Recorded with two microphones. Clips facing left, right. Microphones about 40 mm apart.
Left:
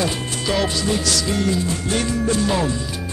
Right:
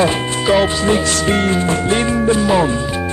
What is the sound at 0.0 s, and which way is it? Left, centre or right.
Speech, right.